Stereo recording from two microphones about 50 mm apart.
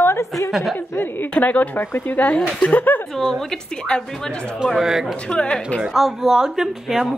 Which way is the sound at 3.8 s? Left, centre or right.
Left.